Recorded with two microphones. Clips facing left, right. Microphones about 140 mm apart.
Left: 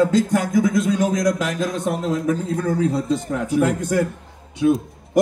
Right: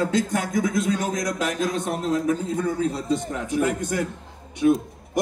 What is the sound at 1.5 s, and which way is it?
Speech, 20° right (ahead or behind).